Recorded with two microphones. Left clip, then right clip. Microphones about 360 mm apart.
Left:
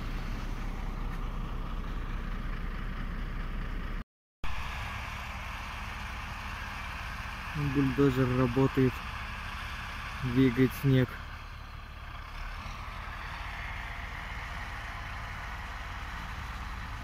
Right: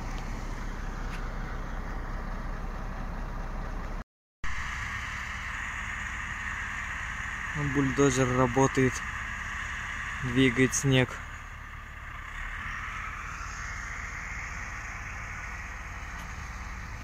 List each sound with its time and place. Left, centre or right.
5.5 s vehicle: centre
7.7 s speech: right
8.9 s speech: centre
9.8 s a sound: centre
10.3 s speech: right